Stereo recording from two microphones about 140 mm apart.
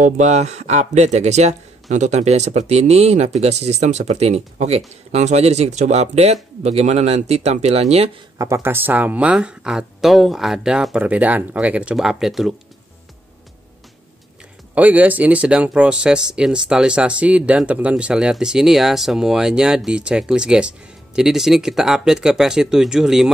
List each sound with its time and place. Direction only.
0.0 s speech: 55° right (ahead or behind)
8.4 s speech: 20° right (ahead or behind); by 12.5 s centre (ahead or behind)
14.8 s speech: 10° right (ahead or behind)